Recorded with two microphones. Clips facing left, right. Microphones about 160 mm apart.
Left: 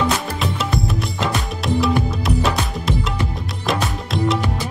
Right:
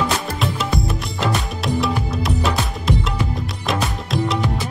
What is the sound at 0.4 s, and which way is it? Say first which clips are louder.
Music: even; centre (ahead or behind).